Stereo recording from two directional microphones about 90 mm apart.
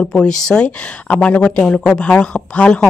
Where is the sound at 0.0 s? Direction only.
5° left (ahead or behind).